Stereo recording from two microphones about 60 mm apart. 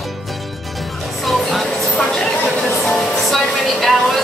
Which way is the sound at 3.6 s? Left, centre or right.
Centre.